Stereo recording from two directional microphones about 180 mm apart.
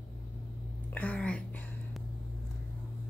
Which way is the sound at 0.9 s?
10° left (ahead or behind).